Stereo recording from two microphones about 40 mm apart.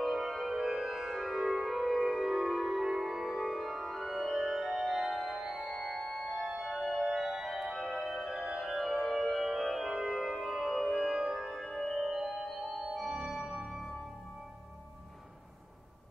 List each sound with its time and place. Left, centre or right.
0.0 s music: centre